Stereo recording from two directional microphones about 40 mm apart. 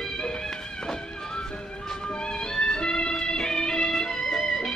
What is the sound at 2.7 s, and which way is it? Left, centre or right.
Music, centre.